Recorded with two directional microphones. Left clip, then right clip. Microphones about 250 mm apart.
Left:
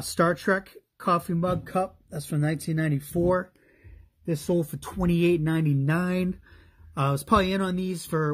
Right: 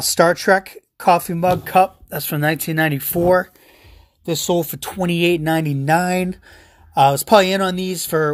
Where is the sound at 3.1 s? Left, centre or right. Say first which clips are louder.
Right 7 dB; right.